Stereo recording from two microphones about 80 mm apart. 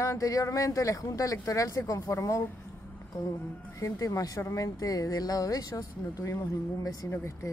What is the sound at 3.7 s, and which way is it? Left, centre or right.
Speech, left.